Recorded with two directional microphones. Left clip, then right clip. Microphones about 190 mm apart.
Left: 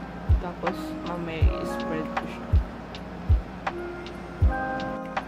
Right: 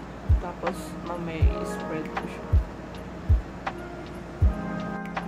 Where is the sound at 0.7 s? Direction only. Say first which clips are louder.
Left 2 dB; centre (ahead or behind).